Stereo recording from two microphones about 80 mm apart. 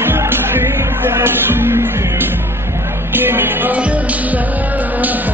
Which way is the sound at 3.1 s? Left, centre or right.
Right.